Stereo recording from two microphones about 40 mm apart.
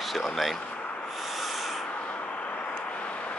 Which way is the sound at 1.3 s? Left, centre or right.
Centre.